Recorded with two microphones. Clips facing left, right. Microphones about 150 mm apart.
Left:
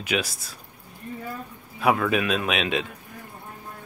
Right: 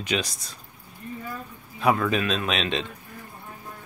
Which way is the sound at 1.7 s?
5° left (ahead or behind).